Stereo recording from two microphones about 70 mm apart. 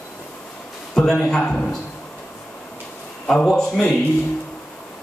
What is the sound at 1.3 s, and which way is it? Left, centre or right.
Speech, centre.